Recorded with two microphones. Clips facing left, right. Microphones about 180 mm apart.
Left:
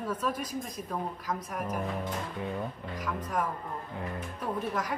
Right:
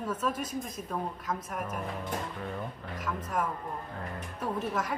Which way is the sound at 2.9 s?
5° right (ahead or behind).